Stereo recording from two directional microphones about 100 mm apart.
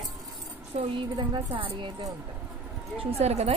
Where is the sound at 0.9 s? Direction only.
55° right (ahead or behind).